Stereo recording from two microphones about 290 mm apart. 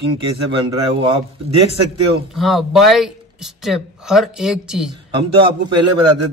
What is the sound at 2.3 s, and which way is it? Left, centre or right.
Speech, centre.